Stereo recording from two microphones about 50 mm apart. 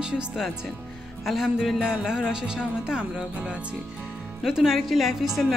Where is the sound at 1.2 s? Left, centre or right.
Centre; by 3.5 s right.